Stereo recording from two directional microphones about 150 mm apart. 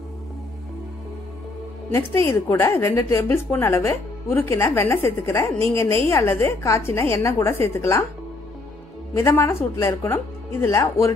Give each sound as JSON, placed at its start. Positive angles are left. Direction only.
{"t": 1.9, "sound": "a woman's voice", "side_deg": 15}
{"t": 9.1, "sound": "a woman's voice", "side_deg": 15}